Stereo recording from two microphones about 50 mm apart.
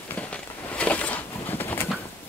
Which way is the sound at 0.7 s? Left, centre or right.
Left.